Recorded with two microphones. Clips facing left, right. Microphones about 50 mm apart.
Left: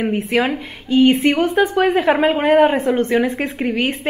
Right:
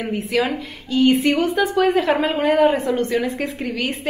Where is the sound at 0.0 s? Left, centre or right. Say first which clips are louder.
Left 3 dB; left.